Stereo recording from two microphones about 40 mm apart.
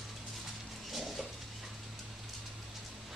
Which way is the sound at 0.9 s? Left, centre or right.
Centre.